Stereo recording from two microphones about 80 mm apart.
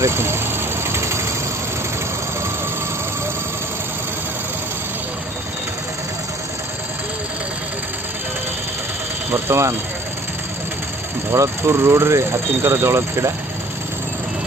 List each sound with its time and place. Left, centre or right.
0.0 s speech: right
0.8 s engine: right
9.3 s speech: right
11.3 s speech: right